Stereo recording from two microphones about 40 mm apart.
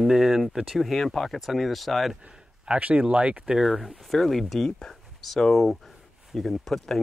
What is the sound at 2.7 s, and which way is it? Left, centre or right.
Speech, right.